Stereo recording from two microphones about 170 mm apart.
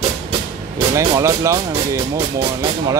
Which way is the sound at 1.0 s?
20° right (ahead or behind).